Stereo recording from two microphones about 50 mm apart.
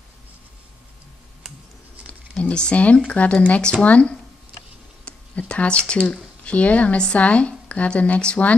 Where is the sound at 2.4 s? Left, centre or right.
Left.